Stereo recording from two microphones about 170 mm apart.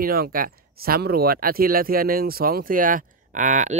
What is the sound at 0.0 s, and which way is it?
Speech, 60° right (ahead or behind).